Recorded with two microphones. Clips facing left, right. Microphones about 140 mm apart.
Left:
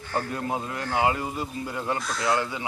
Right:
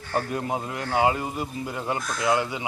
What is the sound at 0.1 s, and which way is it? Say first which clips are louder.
A man's voice: right 2 dB; 15° right (ahead or behind).